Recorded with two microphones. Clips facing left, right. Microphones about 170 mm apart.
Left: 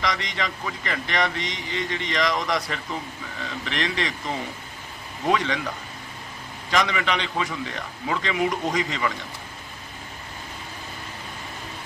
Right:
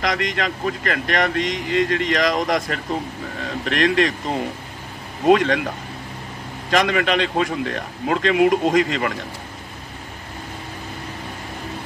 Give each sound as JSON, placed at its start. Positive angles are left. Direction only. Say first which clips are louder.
{"t": 0.0, "sound": "speech", "louder": "right 5 dB", "side_deg": -50}
{"t": 6.7, "sound": "speech", "louder": "right 5 dB", "side_deg": -55}